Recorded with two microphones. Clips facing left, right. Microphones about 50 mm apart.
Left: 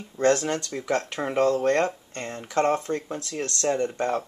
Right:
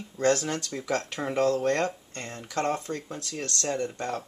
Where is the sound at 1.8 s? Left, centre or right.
Centre.